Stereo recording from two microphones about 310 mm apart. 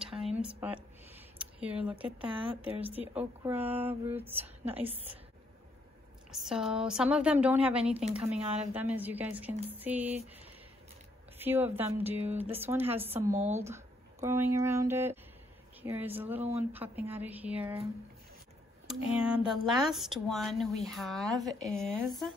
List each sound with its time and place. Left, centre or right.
0.0 s a sound: centre
0.4 s a sound: centre
1.4 s speech: centre
6.3 s speech: centre
11.3 s speech: centre
18.9 s speech: centre